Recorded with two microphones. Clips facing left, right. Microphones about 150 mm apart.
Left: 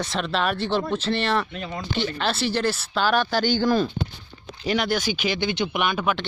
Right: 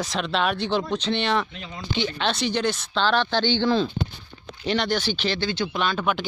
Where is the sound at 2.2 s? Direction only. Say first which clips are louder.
Even; 5° left (ahead or behind).